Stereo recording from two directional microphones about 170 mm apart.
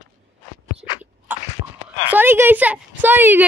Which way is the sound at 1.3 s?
10° right (ahead or behind).